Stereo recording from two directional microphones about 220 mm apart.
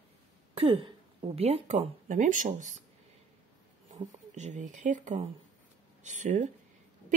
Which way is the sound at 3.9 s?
35° right (ahead or behind).